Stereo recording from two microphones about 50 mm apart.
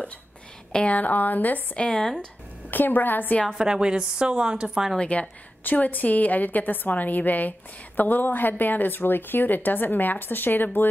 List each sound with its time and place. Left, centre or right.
0.8 s a woman's voice: left
1.8 s speech: centre
2.7 s a woman's voice: left
3.5 s a woman's voice: centre
4.9 s a woman's voice: centre
5.6 s a woman's voice: left